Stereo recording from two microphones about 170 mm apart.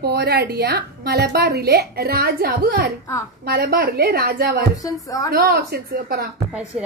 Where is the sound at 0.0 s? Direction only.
70° right (ahead or behind).